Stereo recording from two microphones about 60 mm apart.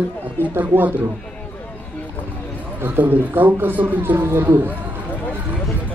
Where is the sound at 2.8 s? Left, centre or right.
Right.